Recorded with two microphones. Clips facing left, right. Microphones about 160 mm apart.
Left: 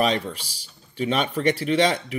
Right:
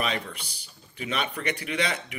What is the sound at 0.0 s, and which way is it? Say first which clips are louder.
Speech: left 7 dB; 35° left (ahead or behind).